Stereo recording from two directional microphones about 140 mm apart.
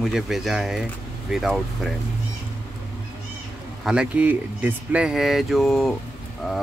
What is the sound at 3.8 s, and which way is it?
Speech, 5° right (ahead or behind).